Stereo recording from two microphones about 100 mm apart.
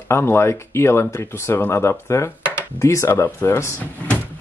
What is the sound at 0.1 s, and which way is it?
Speech, 25° left (ahead or behind).